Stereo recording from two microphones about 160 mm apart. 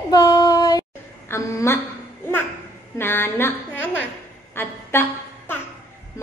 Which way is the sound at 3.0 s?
15° left (ahead or behind).